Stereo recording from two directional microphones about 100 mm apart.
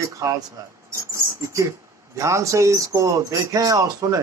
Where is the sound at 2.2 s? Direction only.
30° right (ahead or behind).